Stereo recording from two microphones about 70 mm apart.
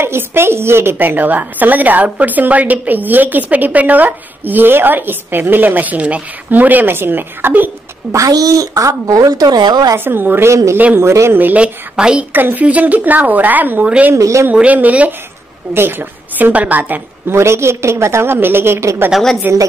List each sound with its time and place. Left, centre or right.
0.0 s a woman's voice: right
8.1 s a woman's voice: right
9.9 s a woman's voice: right
10.5 s a man's voice: right
11.3 s a woman's voice: right
11.6 s a woman's voice: centre
12.3 s a woman's voice: right
14.1 s a man's voice: right
14.5 s a woman's voice: right
17.3 s a woman's voice: right
19.1 s a woman's voice: centre